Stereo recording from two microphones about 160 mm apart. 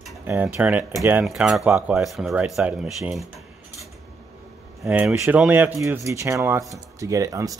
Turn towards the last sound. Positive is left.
turn(degrees=-20)  # may be behind; listen again after turning